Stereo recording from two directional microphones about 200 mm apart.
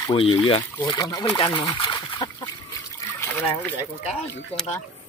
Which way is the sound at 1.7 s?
25° left (ahead or behind).